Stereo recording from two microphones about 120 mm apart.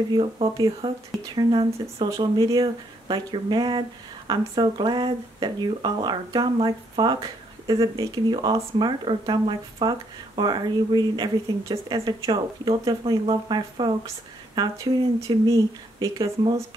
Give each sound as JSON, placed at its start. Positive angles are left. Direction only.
{"t": 0.1, "sound": "speech", "side_deg": -40}
{"t": 2.0, "sound": "speech", "side_deg": -30}